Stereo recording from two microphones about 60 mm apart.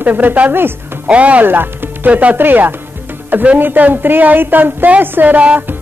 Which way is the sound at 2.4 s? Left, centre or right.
Right.